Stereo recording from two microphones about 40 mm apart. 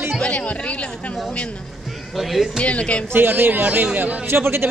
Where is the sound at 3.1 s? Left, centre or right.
Right.